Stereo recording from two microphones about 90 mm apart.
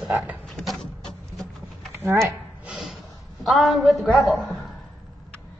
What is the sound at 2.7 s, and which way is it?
Snort, 5° right (ahead or behind).